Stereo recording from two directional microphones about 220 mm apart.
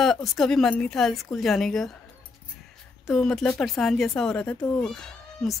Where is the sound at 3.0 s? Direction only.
Centre (ahead or behind).